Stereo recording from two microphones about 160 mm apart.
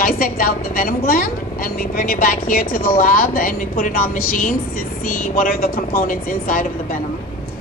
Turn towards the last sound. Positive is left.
turn(degrees=60)  # may be behind; listen again after turning